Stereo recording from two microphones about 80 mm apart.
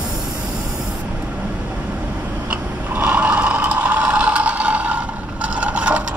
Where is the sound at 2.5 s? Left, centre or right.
Centre.